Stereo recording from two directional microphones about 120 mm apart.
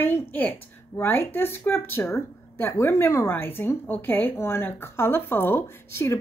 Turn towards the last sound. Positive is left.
turn(degrees=20)  # may be behind; listen again after turning